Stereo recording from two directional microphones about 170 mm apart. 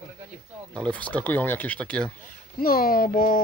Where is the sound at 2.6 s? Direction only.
60° left (ahead or behind).